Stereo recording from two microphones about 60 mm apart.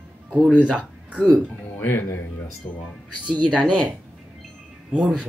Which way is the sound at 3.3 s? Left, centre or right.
Centre.